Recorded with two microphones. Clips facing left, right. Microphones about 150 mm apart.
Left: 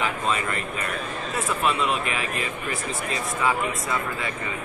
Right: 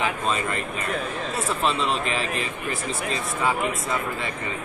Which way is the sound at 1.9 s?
30° right (ahead or behind).